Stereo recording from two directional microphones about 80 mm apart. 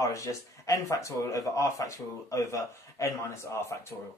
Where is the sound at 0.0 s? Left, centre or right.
Left.